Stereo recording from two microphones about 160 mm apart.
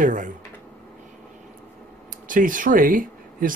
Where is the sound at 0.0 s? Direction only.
55° right (ahead or behind).